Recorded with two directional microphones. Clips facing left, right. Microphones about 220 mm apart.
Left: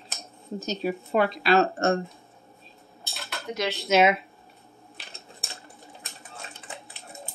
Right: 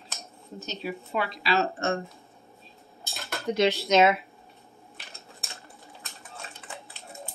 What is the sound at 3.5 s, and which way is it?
Speech, 35° right (ahead or behind).